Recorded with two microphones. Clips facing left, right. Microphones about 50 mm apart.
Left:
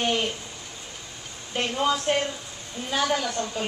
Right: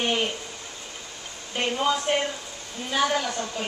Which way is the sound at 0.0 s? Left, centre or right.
Centre.